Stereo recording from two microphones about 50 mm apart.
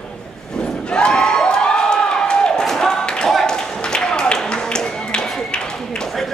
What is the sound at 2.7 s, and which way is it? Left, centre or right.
Tap, centre.